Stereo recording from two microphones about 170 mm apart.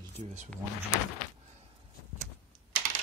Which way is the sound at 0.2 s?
45° right (ahead or behind).